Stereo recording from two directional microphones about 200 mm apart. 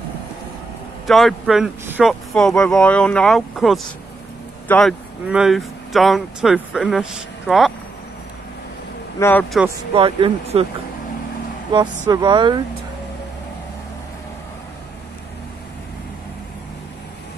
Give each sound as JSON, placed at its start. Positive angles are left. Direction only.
{"t": 1.0, "sound": "speech", "side_deg": 0}
{"t": 9.2, "sound": "speech", "side_deg": 10}
{"t": 9.9, "sound": "speech", "side_deg": -25}
{"t": 11.7, "sound": "speech", "side_deg": -20}